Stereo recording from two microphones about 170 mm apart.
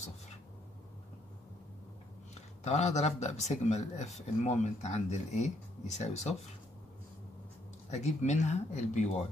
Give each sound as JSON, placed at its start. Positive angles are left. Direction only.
{"t": 2.6, "sound": "speech", "side_deg": 40}
{"t": 7.9, "sound": "speech", "side_deg": 40}